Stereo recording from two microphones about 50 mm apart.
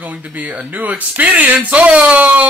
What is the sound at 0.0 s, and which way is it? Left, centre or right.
Speech, right.